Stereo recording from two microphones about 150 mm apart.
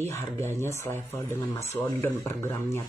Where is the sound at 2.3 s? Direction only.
15° left (ahead or behind).